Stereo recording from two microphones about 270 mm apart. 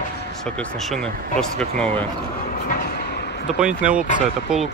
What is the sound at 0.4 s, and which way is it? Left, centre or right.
Speech, centre.